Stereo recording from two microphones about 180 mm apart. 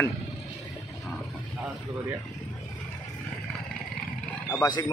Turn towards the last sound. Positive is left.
turn(degrees=20)  # may be behind; listen again after turning